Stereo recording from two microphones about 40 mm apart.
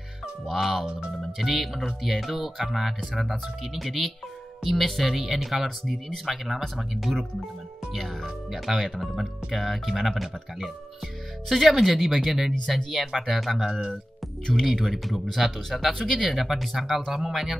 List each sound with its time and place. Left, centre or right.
0.5 s speech: centre
7.9 s speech: centre
8.5 s speech: centre
12.6 s speech: centre
13.7 s speech: centre
14.7 s speech: centre
15.9 s speech: centre
16.2 s speech: centre